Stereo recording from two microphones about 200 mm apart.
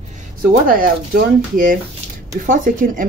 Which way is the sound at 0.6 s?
45° right (ahead or behind).